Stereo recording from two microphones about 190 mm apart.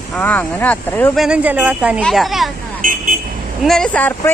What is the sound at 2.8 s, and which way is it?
Vehicle, 45° right (ahead or behind).